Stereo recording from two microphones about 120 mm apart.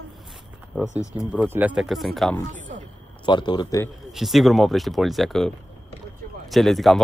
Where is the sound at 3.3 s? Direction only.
40° left (ahead or behind).